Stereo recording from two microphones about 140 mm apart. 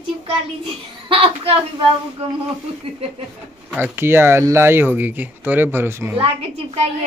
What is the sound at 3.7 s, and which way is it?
Speech, 15° right (ahead or behind).